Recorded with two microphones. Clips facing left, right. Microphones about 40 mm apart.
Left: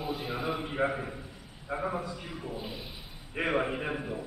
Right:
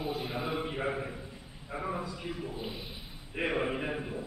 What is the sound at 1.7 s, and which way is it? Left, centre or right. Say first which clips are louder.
Speech: left 4 dB; left.